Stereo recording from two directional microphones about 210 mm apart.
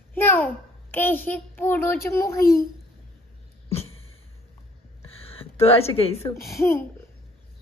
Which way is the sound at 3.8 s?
75° left (ahead or behind).